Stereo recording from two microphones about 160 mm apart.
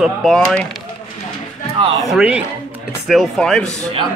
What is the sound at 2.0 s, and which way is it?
Speech, 5° right (ahead or behind).